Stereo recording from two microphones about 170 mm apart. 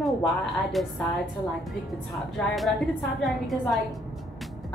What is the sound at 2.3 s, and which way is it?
A woman's voice, centre (ahead or behind).